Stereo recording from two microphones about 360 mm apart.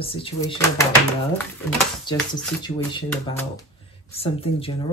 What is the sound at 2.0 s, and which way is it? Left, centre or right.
Speech, centre.